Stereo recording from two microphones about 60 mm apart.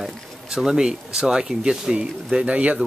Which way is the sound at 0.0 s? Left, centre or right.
Centre.